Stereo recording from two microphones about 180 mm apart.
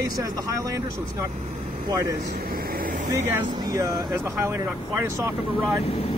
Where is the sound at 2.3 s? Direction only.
55° right (ahead or behind).